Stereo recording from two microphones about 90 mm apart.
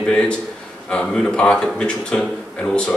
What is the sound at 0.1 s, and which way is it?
A man's voice, 10° left (ahead or behind).